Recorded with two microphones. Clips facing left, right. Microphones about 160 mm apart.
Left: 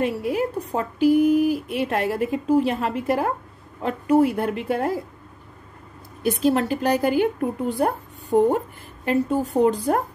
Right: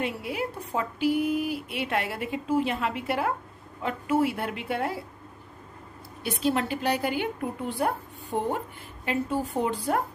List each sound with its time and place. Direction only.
0.0 s a woman's voice: 45° left (ahead or behind)
6.2 s a woman's voice: 45° left (ahead or behind)